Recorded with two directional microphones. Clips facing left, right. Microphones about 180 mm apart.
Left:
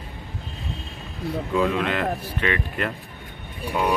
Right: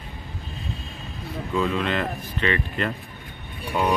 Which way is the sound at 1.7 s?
10° left (ahead or behind).